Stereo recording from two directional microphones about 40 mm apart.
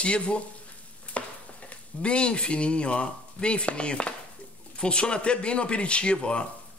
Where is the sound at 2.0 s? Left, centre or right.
Left.